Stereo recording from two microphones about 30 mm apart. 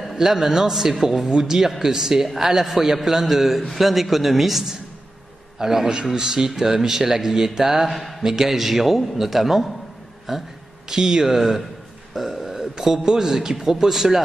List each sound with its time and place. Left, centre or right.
0.0 s speech: centre
7.9 s a man's voice: centre
8.2 s speech: centre
12.1 s burping: centre
12.8 s speech: centre
13.8 s speech: centre